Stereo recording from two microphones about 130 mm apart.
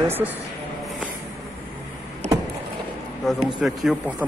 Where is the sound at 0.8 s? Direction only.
10° right (ahead or behind).